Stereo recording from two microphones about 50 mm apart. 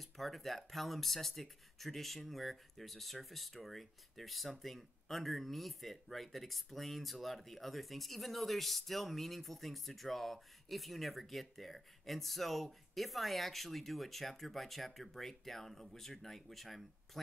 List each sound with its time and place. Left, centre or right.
0.0 s speech: centre